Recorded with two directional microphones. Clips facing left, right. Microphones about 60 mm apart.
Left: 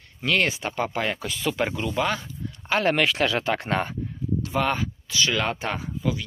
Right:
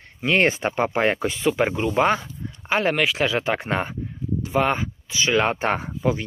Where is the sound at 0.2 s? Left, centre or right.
Right.